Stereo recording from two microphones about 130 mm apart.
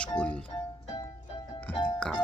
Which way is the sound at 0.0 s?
10° left (ahead or behind).